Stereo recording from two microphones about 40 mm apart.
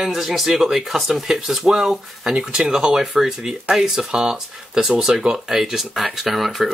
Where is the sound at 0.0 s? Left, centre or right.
Centre.